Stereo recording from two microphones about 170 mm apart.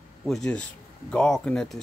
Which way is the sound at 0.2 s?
Centre (ahead or behind).